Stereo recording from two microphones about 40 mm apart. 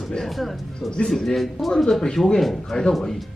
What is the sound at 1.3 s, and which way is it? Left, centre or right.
Speech, centre.